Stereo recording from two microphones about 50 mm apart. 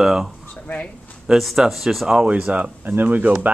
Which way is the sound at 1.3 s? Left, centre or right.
Centre.